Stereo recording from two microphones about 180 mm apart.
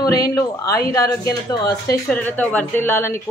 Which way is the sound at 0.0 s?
20° left (ahead or behind).